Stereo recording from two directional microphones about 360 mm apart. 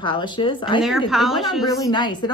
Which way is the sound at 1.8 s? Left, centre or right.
Centre.